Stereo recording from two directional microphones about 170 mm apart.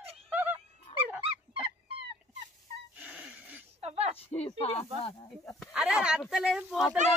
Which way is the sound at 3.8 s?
40° right (ahead or behind).